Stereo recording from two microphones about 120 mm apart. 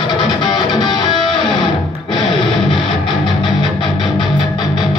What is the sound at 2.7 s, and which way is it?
Music, 40° left (ahead or behind).